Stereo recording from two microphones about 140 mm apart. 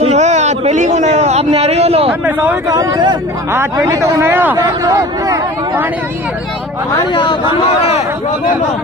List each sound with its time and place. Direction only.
0.0 s a sound: 55° right (ahead or behind)
2.0 s speech: 10° right (ahead or behind)
2.7 s speech: 25° right (ahead or behind)
4.6 s speech: 25° right (ahead or behind)
7.0 s speech: 35° left (ahead or behind)